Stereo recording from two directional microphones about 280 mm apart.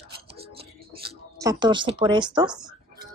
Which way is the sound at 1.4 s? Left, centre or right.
Centre.